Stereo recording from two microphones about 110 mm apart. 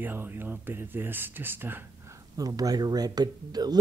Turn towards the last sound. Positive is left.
turn(degrees=-40)  # may be behind; listen again after turning